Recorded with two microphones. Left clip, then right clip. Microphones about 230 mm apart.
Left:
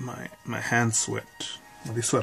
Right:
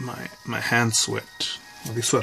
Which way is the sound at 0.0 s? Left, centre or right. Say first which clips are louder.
Right 4 dB; centre.